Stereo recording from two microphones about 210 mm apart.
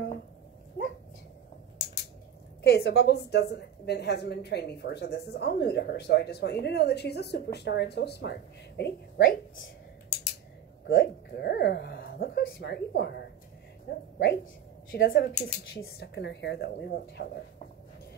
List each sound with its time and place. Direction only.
2.6 s a woman's voice: 50° left (ahead or behind)
10.9 s a woman's voice: 50° left (ahead or behind)
14.1 s a woman's voice: 50° left (ahead or behind)